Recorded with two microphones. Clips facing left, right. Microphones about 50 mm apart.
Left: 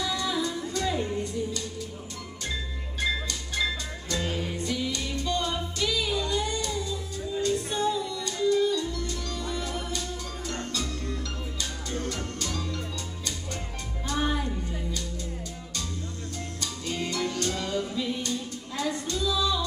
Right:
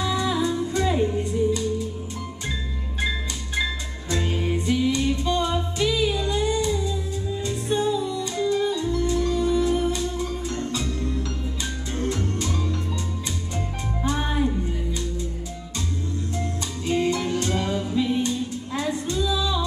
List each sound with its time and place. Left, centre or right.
0.0 s music: centre
4.1 s music: right
11.9 s music: right
14.0 s music: right
16.8 s music: right